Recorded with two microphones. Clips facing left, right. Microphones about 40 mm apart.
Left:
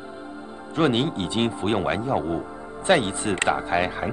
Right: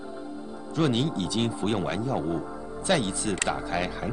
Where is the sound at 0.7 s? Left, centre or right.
Left.